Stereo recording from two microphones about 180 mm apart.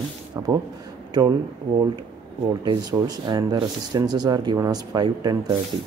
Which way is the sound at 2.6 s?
25° right (ahead or behind).